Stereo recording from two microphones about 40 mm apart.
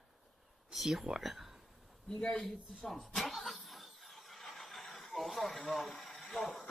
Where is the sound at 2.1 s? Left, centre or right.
Left.